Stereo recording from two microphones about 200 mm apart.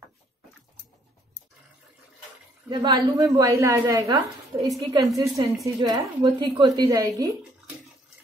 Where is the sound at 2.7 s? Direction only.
20° right (ahead or behind).